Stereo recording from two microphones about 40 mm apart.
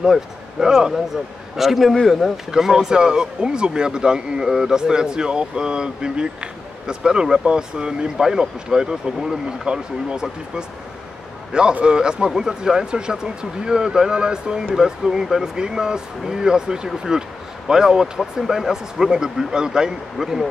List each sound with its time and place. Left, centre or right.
0.0 s a man's voice: centre
2.5 s speech: centre
11.8 s speech: right